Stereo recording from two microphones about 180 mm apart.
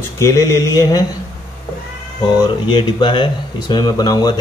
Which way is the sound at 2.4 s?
25° left (ahead or behind).